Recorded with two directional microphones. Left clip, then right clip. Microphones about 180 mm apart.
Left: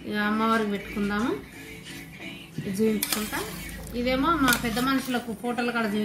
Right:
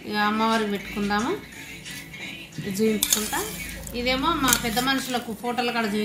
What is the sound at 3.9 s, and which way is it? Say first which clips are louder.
Speech: right 1 dB; 25° right (ahead or behind).